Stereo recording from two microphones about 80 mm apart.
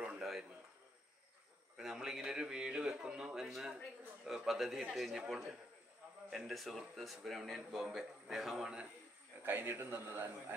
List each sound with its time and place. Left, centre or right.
0.0 s a sound: centre
1.8 s a man's voice: centre
9.4 s a man's voice: right